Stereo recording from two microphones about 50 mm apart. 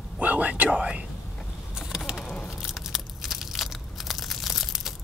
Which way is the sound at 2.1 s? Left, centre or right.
Centre.